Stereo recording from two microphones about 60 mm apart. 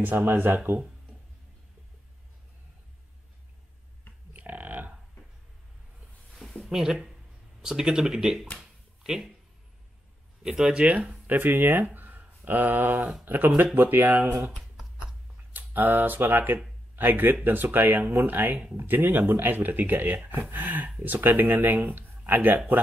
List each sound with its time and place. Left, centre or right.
0.0 s speech: right
4.3 s a sound: right
6.7 s speech: centre
8.5 s a sound: centre
10.4 s speech: centre
11.2 s speech: right
15.5 s speech: right